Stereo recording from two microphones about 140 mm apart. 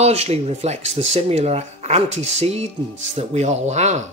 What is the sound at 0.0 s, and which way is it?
A man's voice, 50° right (ahead or behind).